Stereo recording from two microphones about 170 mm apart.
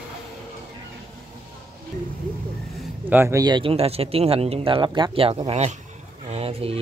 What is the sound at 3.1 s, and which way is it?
Speech, 15° right (ahead or behind).